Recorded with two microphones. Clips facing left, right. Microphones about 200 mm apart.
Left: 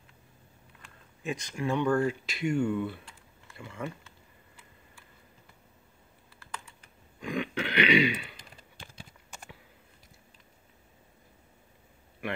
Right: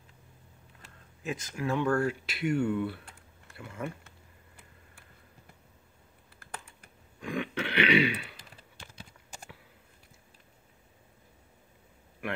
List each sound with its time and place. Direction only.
1.2 s speech: centre (ahead or behind)
6.4 s typing: 55° right (ahead or behind)
7.2 s a sound: centre (ahead or behind)